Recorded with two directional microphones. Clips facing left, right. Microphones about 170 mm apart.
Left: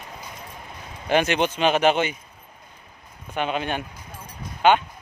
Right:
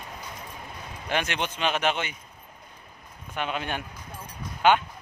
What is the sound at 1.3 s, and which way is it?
Speech, 35° left (ahead or behind).